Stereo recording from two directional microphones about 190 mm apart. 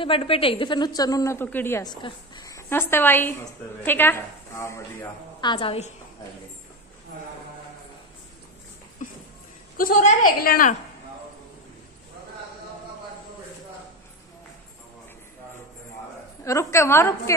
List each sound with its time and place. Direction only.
0.0 s a woman's voice: 30° left (ahead or behind)
5.4 s a woman's voice: 25° left (ahead or behind)
9.0 s a sound: 40° left (ahead or behind)
9.8 s a woman's voice: 50° left (ahead or behind)
16.4 s a woman's voice: 15° left (ahead or behind)